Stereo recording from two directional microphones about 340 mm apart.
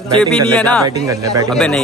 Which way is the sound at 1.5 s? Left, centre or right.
Centre.